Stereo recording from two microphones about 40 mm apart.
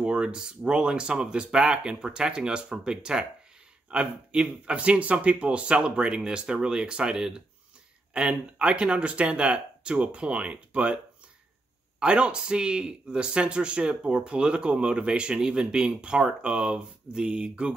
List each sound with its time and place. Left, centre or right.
0.0 s speech: right
12.0 s speech: right